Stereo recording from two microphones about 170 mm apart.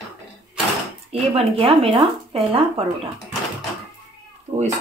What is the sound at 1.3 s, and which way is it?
Speech, 35° right (ahead or behind).